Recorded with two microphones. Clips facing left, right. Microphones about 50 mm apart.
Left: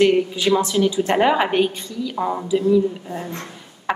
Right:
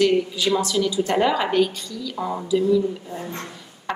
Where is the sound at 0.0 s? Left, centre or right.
Left.